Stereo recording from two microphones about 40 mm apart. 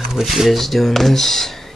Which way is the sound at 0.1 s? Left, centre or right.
Centre.